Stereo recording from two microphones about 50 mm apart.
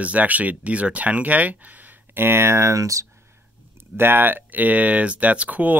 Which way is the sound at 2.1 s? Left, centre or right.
Right.